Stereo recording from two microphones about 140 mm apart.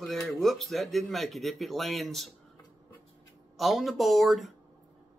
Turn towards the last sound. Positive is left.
turn(degrees=0)  # may be behind; listen again after turning